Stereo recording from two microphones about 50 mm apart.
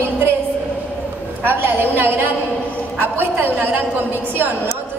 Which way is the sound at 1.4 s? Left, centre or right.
Right.